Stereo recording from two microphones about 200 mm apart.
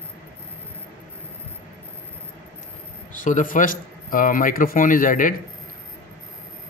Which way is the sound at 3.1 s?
40° left (ahead or behind).